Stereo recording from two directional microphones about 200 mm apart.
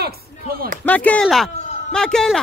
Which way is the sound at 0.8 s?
10° left (ahead or behind).